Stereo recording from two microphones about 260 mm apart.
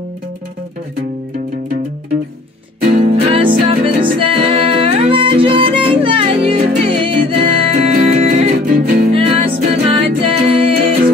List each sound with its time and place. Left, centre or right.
2.9 s music: right
9.1 s music: right